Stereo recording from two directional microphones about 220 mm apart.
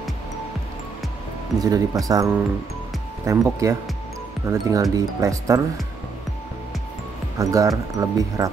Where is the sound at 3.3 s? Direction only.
15° right (ahead or behind).